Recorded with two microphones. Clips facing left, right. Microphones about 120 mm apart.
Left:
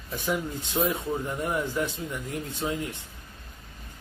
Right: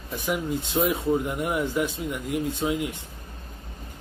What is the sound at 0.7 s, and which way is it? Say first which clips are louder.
Speech: right 3 dB; 15° right (ahead or behind).